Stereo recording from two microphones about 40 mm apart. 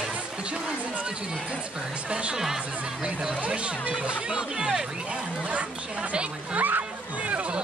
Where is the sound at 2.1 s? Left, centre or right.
Right.